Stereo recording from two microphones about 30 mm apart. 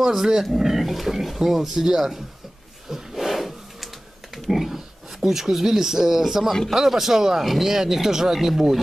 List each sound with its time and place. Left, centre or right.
0.0 s speech: centre
2.9 s a sound: centre
4.4 s speech: centre